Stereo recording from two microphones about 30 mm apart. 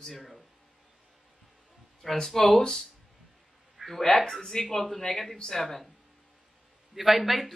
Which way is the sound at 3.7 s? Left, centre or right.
Centre.